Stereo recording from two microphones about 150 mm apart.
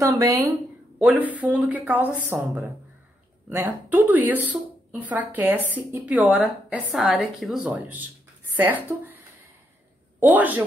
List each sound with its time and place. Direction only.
0.0 s a woman's voice: 20° right (ahead or behind)
10.3 s a woman's voice: 10° right (ahead or behind)